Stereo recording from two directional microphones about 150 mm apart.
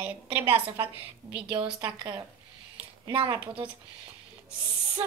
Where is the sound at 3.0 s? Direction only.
30° right (ahead or behind).